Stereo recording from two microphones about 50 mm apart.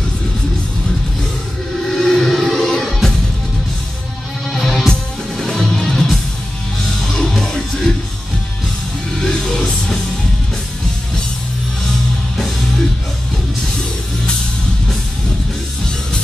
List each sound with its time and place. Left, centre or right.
1.9 s a sound: centre
2.7 s music: centre
4.5 s music: centre
9.1 s music: centre
12.4 s music: centre